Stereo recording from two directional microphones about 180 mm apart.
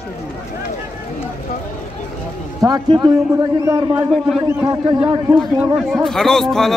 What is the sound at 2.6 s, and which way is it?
A man's voice, 20° right (ahead or behind).